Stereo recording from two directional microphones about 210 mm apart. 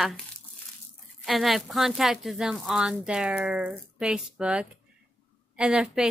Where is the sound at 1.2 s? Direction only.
Centre (ahead or behind).